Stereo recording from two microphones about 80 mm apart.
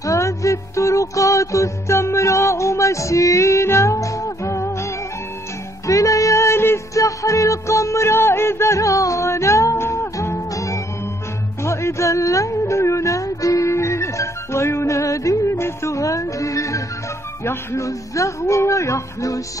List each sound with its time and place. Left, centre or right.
0.0 s music: left
5.9 s music: left
7.0 s music: left
17.5 s speech: left